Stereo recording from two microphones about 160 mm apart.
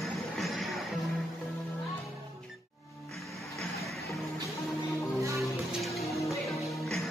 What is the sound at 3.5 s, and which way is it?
Music, centre (ahead or behind).